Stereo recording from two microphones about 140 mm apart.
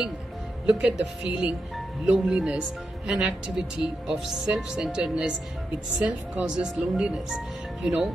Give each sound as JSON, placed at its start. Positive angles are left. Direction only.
{"t": 0.7, "sound": "speech", "side_deg": -5}